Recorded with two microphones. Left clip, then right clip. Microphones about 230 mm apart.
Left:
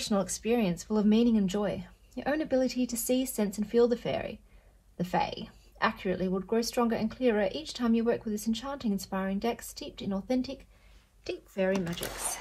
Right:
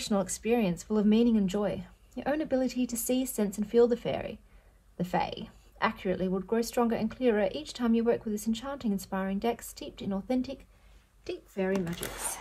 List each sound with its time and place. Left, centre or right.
0.0 s a woman's voice: right
11.5 s a woman's voice: centre